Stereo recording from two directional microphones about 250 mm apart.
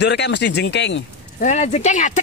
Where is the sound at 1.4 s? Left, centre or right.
Left.